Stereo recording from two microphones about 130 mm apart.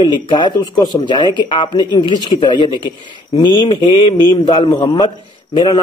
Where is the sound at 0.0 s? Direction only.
35° left (ahead or behind).